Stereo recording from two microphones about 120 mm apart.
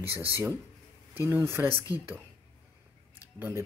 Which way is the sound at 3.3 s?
20° right (ahead or behind).